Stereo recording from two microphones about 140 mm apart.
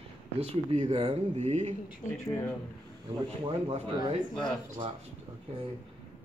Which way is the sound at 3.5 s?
40° right (ahead or behind).